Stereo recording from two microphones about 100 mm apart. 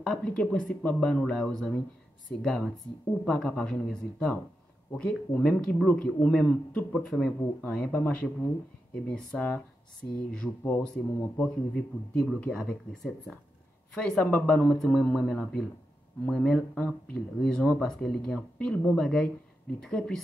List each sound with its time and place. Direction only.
0.0 s speech: 10° left (ahead or behind)
14.2 s speech: 25° left (ahead or behind)
14.5 s speech: 5° left (ahead or behind)